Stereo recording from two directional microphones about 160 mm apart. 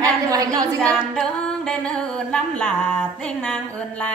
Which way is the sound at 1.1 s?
5° left (ahead or behind).